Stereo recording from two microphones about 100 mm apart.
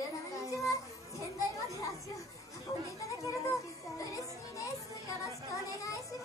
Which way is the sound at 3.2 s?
30° left (ahead or behind).